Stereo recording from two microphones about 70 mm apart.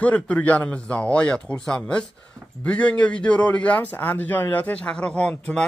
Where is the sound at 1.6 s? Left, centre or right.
Centre.